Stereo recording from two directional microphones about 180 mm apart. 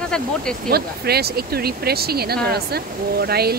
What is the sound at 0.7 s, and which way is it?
Speech, 60° right (ahead or behind).